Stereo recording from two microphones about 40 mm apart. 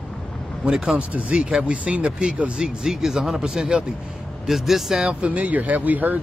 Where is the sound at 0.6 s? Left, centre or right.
Centre.